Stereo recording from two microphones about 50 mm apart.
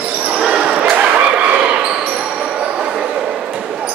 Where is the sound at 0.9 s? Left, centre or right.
Right.